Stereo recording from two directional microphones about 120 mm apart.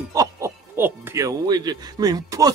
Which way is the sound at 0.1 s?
30° right (ahead or behind).